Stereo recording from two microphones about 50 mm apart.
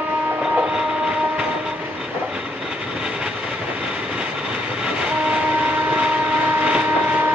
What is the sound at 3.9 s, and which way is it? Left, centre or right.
Train, centre.